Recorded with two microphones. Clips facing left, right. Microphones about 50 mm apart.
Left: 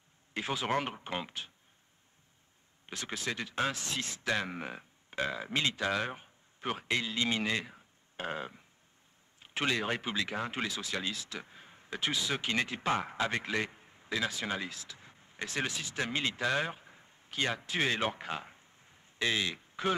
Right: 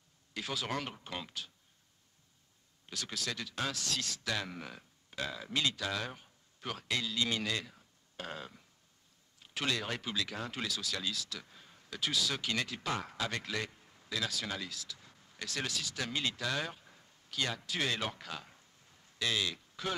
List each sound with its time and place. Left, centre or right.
0.3 s speech: left
2.9 s speech: left